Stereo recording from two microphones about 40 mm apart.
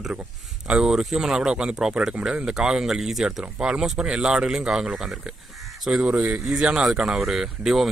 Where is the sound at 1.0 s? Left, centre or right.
Centre.